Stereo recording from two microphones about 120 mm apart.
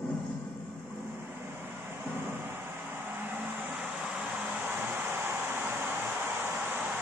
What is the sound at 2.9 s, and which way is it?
Vehicle, 15° right (ahead or behind).